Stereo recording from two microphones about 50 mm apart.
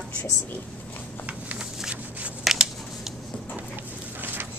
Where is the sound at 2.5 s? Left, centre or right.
Centre.